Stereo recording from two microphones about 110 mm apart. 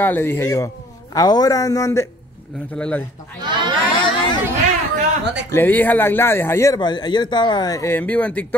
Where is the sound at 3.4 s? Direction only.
45° right (ahead or behind).